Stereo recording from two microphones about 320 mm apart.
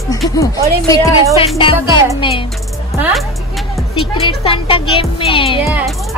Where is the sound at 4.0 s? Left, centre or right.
Centre.